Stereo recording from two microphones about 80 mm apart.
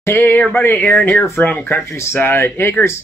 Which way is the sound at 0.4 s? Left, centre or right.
Centre.